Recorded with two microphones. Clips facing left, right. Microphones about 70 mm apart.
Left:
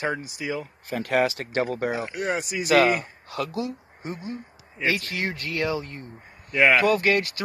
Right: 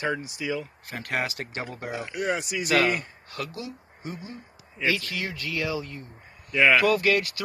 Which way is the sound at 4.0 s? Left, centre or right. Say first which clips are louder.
Left 4 dB; left.